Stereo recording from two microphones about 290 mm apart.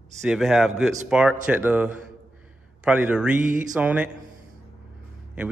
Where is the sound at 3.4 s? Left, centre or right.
Right.